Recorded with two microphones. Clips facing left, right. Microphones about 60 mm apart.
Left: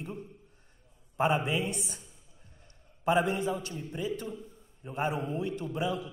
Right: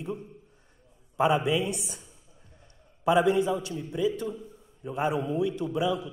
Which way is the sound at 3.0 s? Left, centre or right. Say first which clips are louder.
Right 5 dB; left.